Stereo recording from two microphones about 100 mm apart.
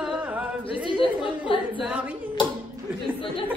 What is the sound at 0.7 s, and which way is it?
Chatter, 60° left (ahead or behind).